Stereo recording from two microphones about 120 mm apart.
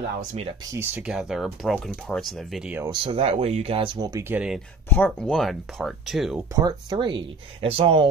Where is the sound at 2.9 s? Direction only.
50° right (ahead or behind).